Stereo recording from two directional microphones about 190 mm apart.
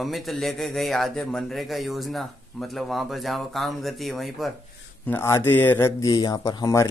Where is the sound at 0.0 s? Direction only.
Centre (ahead or behind).